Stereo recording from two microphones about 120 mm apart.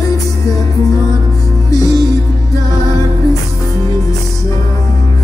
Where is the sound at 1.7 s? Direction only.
30° left (ahead or behind).